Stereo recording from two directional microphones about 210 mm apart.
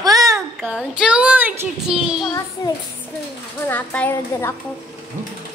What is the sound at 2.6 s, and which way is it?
Speech, 20° left (ahead or behind).